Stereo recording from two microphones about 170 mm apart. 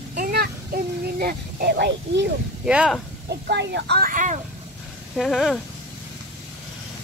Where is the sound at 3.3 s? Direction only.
80° right; by 4.4 s 50° right (ahead or behind).